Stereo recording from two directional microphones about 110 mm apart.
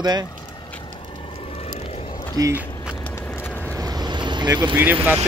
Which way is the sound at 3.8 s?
35° right (ahead or behind).